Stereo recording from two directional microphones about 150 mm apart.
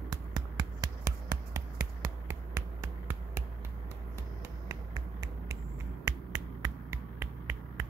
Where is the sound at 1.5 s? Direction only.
20° right (ahead or behind).